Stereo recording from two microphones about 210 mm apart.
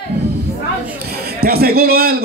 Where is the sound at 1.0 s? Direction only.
50° right (ahead or behind).